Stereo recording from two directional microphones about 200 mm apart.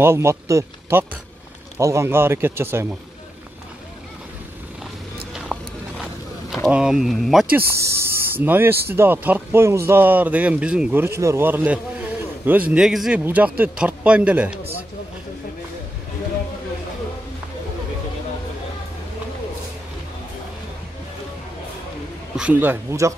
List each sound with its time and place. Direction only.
0.0 s speech: 15° right (ahead or behind)
5.3 s a sound: 5° right (ahead or behind)
6.5 s speech: 5° right (ahead or behind)
22.4 s speech: 10° right (ahead or behind)